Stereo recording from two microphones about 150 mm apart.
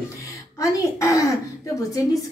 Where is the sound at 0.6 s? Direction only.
20° left (ahead or behind).